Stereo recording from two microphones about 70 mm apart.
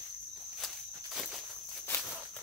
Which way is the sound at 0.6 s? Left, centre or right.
Centre.